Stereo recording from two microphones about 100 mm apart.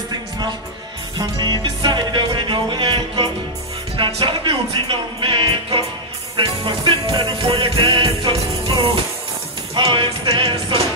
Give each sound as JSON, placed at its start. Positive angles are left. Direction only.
{"t": 1.1, "sound": "music", "side_deg": -40}